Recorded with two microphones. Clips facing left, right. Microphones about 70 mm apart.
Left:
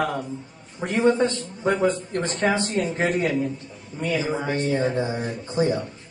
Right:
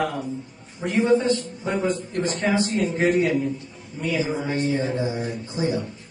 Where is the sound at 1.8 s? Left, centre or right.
Left.